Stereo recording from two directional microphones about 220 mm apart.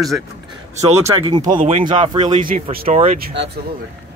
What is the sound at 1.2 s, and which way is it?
Speech, 20° right (ahead or behind).